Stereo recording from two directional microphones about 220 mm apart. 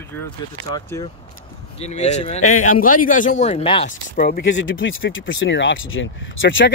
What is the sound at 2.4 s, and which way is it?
Speech, 75° left (ahead or behind).